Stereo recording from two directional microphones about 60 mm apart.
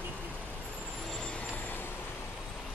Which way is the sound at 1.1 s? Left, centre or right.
Centre.